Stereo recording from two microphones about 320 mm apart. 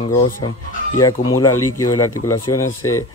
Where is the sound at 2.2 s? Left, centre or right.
Left.